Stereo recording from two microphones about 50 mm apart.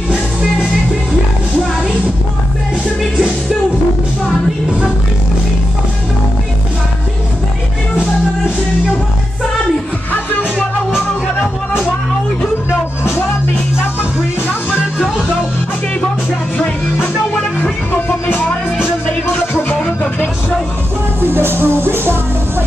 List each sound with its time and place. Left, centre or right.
17.6 s music: left
21.3 s music: right